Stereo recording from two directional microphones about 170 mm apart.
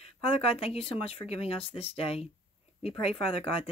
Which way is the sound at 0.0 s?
35° left (ahead or behind).